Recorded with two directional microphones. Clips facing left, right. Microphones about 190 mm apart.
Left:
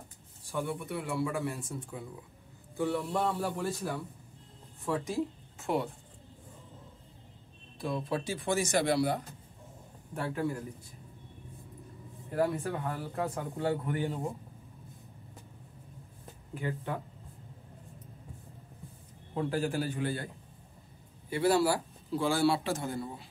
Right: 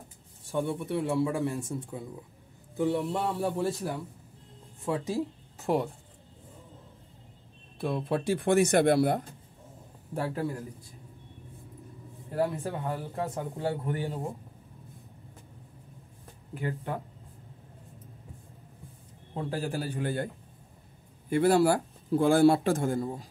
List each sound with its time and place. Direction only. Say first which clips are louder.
0.5 s a man's voice: right 5 dB; 25° right (ahead or behind)
5.1 s music: right 2 dB; 35° right (ahead or behind)
7.8 s speech: right 4 dB; 55° right (ahead or behind)
10.1 s speech: right 3 dB; 35° right (ahead or behind)
12.3 s speech: right 1 dB; 30° right (ahead or behind)
19.3 s speech: left 1 dB; 35° right (ahead or behind)
21.3 s speech: right 4 dB; 50° right (ahead or behind)